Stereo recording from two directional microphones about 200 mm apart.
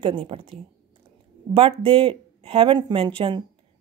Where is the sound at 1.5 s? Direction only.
30° right (ahead or behind).